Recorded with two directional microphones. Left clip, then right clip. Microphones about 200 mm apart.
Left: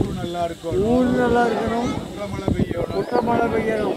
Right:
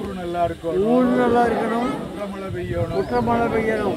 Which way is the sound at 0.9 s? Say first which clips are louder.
Right 1 dB; 5° left (ahead or behind).